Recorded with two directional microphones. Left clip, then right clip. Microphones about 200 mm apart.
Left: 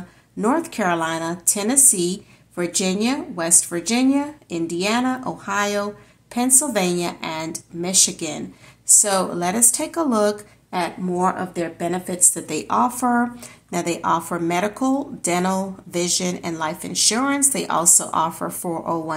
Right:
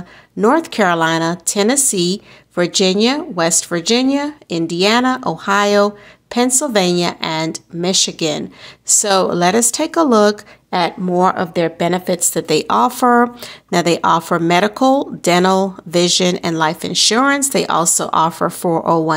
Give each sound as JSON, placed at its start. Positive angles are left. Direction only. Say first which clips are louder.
{"t": 0.4, "sound": "speech", "louder": "right 8 dB", "side_deg": -40}